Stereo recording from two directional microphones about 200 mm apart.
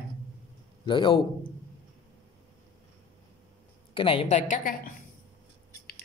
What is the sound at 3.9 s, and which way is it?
Speech, 25° left (ahead or behind).